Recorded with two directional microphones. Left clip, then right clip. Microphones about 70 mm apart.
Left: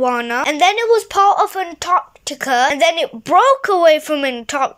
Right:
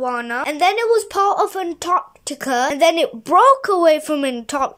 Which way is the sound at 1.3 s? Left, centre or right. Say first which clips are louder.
Left 4 dB; right.